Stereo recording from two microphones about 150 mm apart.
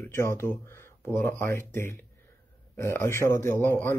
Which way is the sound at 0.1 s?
15° left (ahead or behind).